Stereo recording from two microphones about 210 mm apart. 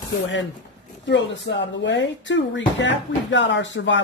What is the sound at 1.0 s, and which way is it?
Speech, 60° left (ahead or behind).